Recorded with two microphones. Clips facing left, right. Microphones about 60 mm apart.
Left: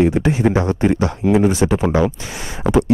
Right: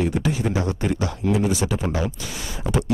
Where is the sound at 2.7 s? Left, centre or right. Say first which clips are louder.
Left 9 dB; left.